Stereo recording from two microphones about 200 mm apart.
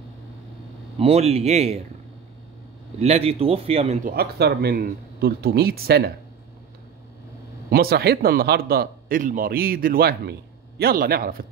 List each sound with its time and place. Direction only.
0.9 s a man's voice: 30° right (ahead or behind)
3.0 s speech: 30° right (ahead or behind)
4.0 s a man's voice: 50° right (ahead or behind)
7.7 s a man's voice: 50° right (ahead or behind)